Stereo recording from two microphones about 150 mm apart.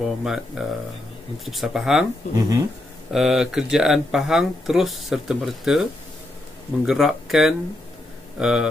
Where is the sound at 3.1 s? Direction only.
Centre (ahead or behind).